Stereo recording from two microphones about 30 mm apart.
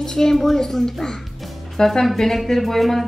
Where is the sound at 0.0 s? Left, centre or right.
Centre.